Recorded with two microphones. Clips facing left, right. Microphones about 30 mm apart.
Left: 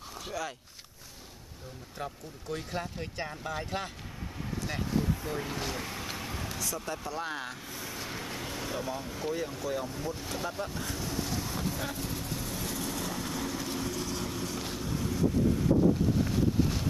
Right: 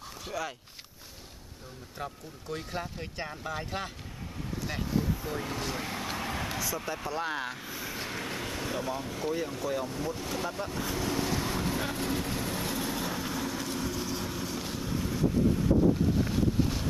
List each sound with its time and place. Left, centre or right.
0.3 s speech: centre
2.5 s speech: centre
5.9 s vehicle: centre
6.9 s speech: centre
11.0 s vehicle: right; by 15.7 s centre
16.2 s boat: centre